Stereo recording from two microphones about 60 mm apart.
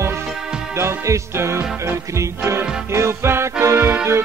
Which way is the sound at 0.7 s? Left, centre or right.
Right.